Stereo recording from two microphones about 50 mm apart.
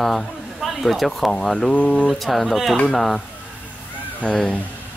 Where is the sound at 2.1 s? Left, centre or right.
Centre.